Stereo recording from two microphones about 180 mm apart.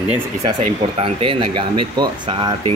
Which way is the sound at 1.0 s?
30° right (ahead or behind).